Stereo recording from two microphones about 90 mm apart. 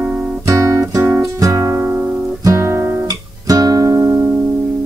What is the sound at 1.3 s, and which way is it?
Music, 35° right (ahead or behind).